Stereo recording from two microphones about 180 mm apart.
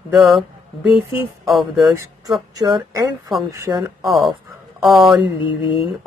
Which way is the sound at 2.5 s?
20° right (ahead or behind).